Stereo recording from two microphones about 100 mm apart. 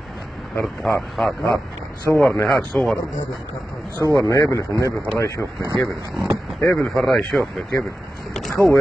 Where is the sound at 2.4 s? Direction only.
Centre (ahead or behind).